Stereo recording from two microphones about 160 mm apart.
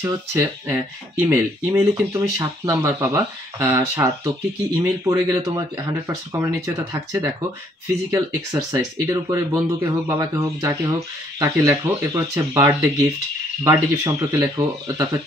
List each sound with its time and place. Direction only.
0.0 s speech: 15° right (ahead or behind)